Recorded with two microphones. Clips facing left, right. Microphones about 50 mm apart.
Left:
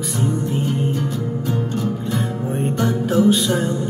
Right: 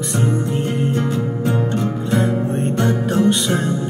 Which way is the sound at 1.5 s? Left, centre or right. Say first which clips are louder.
Right 2 dB; right.